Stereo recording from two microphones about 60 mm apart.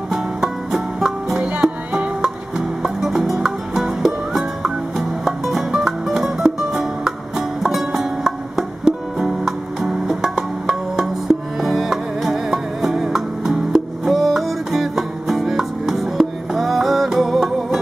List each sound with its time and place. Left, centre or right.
0.1 s music: centre
1.4 s music: right
2.2 s music: centre